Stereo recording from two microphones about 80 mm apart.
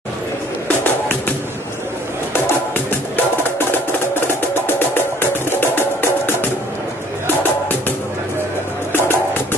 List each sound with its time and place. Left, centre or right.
4.6 s music: left
9.0 s music: left